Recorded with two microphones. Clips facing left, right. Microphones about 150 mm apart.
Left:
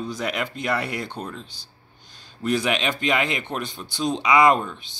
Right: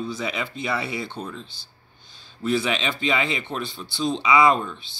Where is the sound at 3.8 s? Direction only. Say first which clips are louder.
Even; 15° left (ahead or behind).